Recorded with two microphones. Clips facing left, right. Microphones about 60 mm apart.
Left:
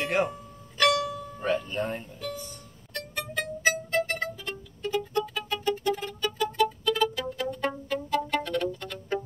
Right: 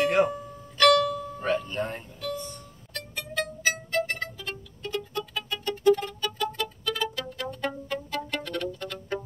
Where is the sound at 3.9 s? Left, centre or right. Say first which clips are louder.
Left 1 dB; centre.